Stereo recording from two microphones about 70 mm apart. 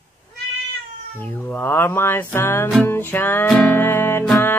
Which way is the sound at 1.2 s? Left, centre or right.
Left.